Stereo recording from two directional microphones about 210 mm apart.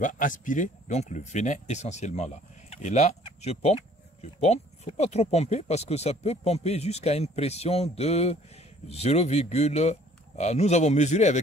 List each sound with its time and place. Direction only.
0.0 s speech: 40° left (ahead or behind)